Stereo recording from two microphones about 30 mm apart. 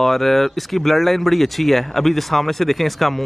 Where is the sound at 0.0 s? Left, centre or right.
Centre.